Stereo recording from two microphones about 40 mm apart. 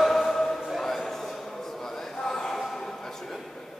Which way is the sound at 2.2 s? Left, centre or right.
Centre.